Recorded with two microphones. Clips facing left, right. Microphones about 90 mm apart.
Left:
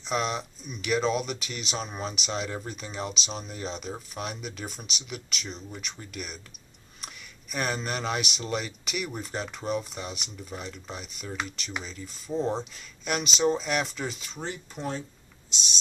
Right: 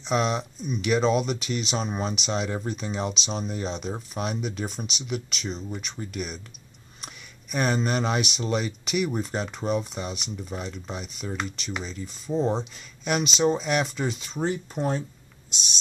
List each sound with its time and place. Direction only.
0.0 s speech: centre (ahead or behind)
14.7 s speech: 40° right (ahead or behind)